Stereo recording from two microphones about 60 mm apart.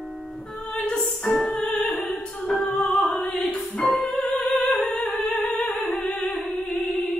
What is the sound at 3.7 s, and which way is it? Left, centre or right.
Opera, left.